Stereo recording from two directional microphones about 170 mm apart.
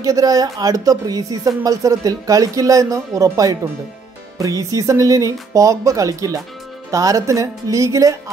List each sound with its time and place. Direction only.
0.0 s speech: 20° right (ahead or behind)